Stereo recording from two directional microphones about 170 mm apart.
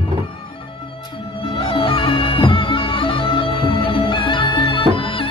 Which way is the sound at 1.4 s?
30° left (ahead or behind).